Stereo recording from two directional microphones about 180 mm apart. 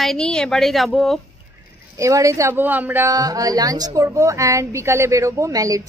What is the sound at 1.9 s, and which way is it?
Speech, 15° right (ahead or behind).